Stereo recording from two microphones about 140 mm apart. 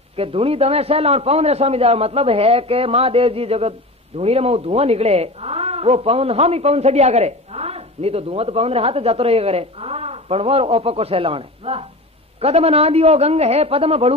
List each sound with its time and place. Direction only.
0.1 s speech: 45° right (ahead or behind)